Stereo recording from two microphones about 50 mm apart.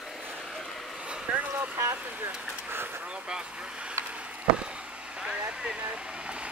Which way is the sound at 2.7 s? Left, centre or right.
Right.